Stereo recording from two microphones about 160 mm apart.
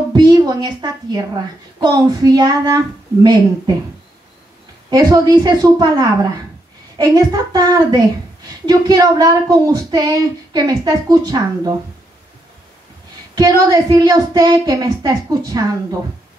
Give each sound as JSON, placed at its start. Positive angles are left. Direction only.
{"t": 0.1, "sound": "a woman's voice", "side_deg": -25}
{"t": 4.8, "sound": "a woman's voice", "side_deg": -25}
{"t": 13.3, "sound": "a woman's voice", "side_deg": -25}